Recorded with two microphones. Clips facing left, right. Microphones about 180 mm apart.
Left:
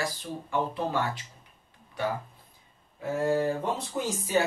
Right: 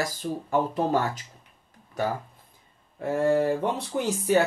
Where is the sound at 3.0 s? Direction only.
65° right (ahead or behind).